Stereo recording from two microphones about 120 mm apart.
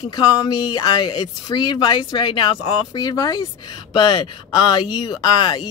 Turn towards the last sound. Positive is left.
turn(degrees=35)  # may be behind; listen again after turning